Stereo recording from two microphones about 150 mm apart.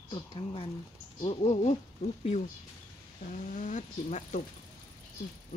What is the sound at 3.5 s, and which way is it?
Speech, 60° left (ahead or behind).